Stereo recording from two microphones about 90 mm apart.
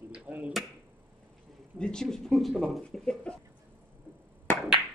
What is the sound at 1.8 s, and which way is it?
Speech, 5° left (ahead or behind).